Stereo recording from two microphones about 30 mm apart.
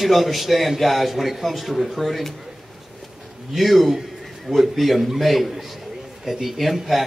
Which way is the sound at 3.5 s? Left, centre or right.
Centre.